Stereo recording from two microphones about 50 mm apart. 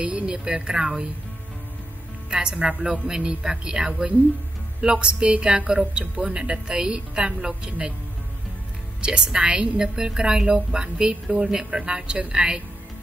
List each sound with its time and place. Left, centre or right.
0.0 s speech: right
2.3 s a woman's voice: centre
9.0 s a woman's voice: centre